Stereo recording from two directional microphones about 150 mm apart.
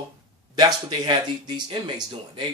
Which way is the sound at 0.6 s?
30° right (ahead or behind).